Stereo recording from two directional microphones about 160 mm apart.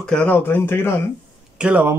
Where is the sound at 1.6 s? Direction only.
10° right (ahead or behind).